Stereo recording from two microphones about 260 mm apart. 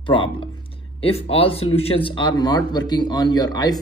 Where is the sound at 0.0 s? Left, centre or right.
Centre.